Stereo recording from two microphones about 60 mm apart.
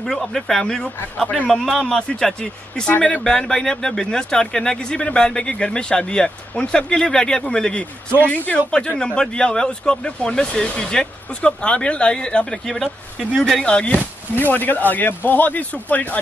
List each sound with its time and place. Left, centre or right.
0.0 s speech: centre
1.2 s speech: centre
1.5 s a man's voice: centre
1.9 s speech: centre; by 8.6 s left
8.7 s speech: centre
13.7 s speech: left
14.4 s speech: left